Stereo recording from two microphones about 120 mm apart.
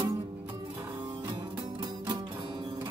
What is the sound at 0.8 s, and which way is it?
Music, 40° right (ahead or behind).